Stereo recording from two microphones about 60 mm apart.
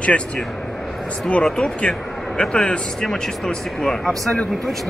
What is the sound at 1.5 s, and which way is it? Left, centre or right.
A man's voice, centre.